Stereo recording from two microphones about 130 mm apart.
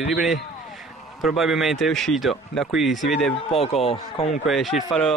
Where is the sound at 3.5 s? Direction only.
55° left (ahead or behind).